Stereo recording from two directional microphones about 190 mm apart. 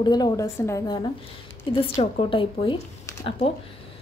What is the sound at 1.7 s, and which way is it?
A woman's voice, 30° left (ahead or behind).